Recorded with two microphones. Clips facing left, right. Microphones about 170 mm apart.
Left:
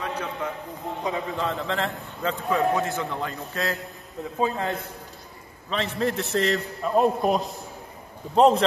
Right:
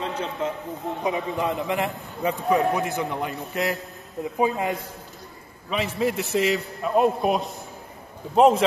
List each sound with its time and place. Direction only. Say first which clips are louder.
0.0 s a man's voice: right 2 dB; 25° right (ahead or behind)
5.9 s a man's voice: right 1 dB; 5° right (ahead or behind)